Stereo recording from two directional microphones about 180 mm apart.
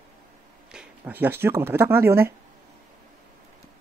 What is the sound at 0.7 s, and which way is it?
Speech, 5° right (ahead or behind).